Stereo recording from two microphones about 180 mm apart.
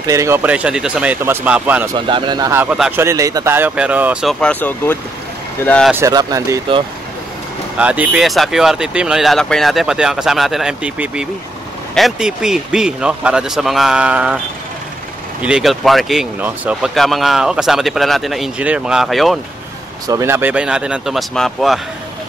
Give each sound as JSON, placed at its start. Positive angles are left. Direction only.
{"t": 0.0, "sound": "speech", "side_deg": -15}
{"t": 2.0, "sound": "speech", "side_deg": -25}
{"t": 5.9, "sound": "speech", "side_deg": -20}
{"t": 7.8, "sound": "speech", "side_deg": -10}
{"t": 15.4, "sound": "speech", "side_deg": -5}
{"t": 20.1, "sound": "speech", "side_deg": -15}